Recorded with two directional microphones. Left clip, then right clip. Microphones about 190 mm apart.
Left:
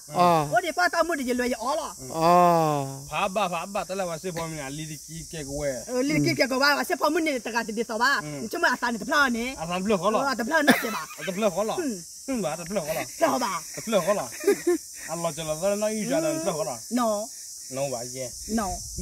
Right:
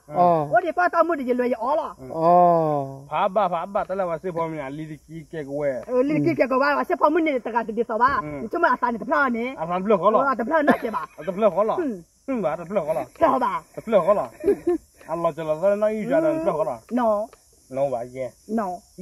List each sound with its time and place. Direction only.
0.2 s speech: 15° left (ahead or behind)
3.1 s speech: 30° left (ahead or behind)
8.5 s speech: 15° left (ahead or behind)
10.6 s speech: 10° left (ahead or behind)
11.3 s speech: 35° left (ahead or behind)
12.9 s speech: 15° left (ahead or behind)
13.8 s speech: 30° left (ahead or behind)
14.4 s speech: 15° left (ahead or behind)
17.7 s speech: 30° left (ahead or behind)